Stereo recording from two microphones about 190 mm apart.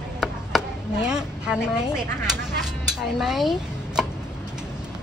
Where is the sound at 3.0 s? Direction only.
Centre (ahead or behind).